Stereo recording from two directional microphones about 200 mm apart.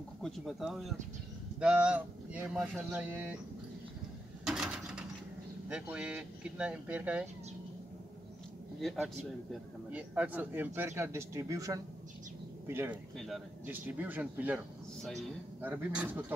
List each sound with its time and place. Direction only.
0.2 s a man's voice: centre (ahead or behind)
4.5 s a sound: 5° right (ahead or behind)
5.7 s speech: 5° right (ahead or behind)
8.8 s a man's voice: centre (ahead or behind)
15.6 s a man's voice: 10° right (ahead or behind)